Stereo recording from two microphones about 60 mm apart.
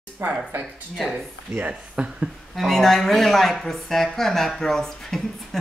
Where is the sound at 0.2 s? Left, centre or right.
Right.